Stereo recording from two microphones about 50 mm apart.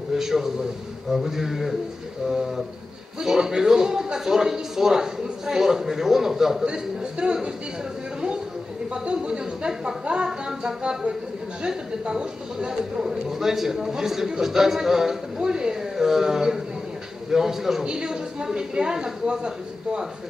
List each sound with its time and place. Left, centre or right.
0.1 s a man's voice: centre
8.9 s speech: centre